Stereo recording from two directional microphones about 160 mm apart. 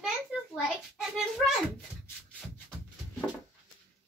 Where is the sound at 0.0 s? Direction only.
5° right (ahead or behind).